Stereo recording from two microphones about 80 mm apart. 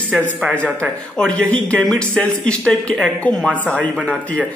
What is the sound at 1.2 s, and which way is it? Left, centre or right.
Speech, centre.